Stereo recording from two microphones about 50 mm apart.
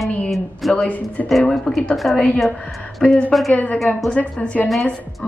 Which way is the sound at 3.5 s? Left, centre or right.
Left.